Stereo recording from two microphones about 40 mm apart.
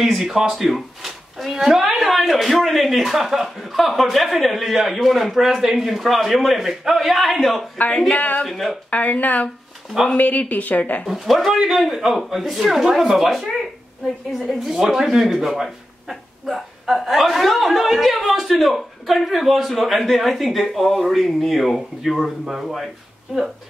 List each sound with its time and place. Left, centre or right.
0.0 s speech: centre
8.2 s speech: left
8.5 s speech: centre
8.9 s speech: left
10.8 s speech: left
11.1 s speech: centre
14.7 s speech: centre
22.4 s speech: centre